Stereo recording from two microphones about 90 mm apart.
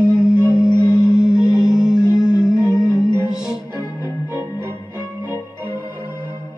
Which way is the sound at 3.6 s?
20° right (ahead or behind).